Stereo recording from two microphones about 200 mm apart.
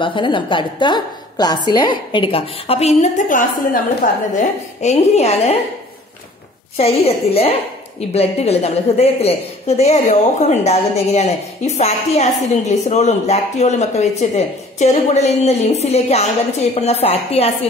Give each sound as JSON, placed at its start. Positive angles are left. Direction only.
{"t": 0.0, "sound": "a woman's voice", "side_deg": 25}
{"t": 6.8, "sound": "a woman's voice", "side_deg": 30}